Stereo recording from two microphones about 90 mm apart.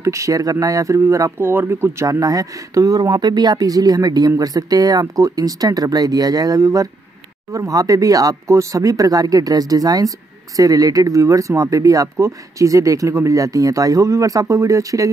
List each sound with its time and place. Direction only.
0.0 s speech: 35° right (ahead or behind)
1.4 s speech: 25° right (ahead or behind)